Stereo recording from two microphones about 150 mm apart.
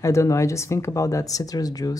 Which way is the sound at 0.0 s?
20° left (ahead or behind).